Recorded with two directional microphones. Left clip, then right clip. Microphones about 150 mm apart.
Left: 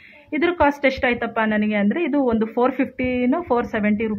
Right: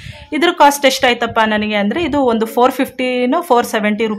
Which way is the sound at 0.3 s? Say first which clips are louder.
Right 8 dB; 35° right (ahead or behind).